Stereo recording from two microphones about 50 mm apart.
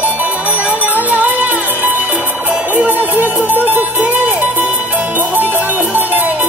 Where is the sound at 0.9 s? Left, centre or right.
Right.